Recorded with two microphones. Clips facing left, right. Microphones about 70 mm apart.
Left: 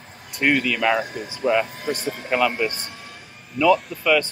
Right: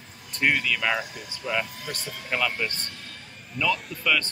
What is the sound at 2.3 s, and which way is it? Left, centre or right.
Speech, centre.